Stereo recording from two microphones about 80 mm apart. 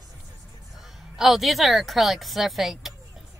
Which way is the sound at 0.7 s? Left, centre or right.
Centre.